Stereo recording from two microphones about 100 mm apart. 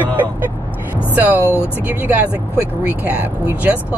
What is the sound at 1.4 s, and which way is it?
Speech, 25° left (ahead or behind).